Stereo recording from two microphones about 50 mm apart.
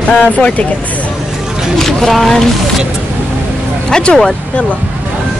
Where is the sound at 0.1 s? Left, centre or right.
Left.